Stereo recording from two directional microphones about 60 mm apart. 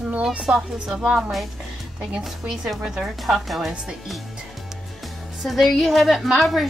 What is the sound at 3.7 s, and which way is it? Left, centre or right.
Speech, centre.